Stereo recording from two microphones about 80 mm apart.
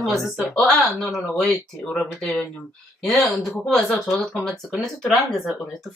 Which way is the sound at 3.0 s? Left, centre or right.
Centre.